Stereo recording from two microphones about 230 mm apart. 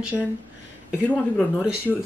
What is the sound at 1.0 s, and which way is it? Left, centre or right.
Speech, centre.